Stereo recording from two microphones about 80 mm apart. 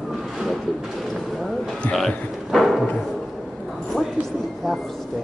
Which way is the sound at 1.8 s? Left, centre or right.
Centre.